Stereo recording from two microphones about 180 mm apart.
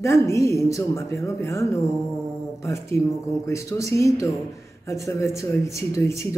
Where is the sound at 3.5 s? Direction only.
15° left (ahead or behind).